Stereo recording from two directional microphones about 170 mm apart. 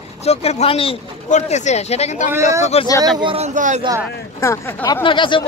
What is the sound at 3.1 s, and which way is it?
Speech, 35° right (ahead or behind).